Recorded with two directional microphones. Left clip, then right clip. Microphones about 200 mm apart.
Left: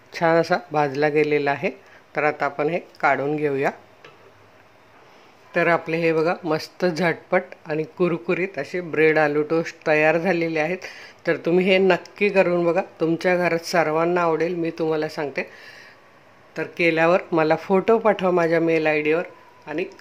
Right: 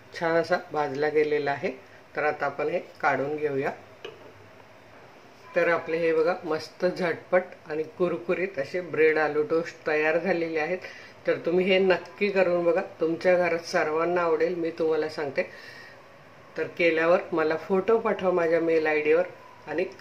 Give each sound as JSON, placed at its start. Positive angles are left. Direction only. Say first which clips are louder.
{"t": 0.1, "sound": "speech", "louder": "left 6 dB", "side_deg": 30}
{"t": 5.5, "sound": "speech", "louder": "left 4 dB", "side_deg": 40}